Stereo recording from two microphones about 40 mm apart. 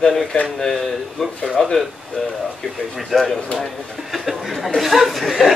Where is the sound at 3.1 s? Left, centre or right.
Centre.